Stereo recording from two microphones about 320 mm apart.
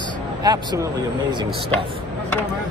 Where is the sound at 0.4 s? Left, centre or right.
Centre.